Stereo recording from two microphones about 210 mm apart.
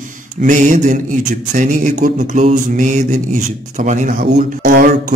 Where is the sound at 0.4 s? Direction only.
40° right (ahead or behind).